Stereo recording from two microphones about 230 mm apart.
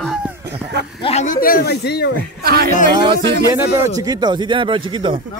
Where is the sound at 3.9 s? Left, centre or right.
Centre.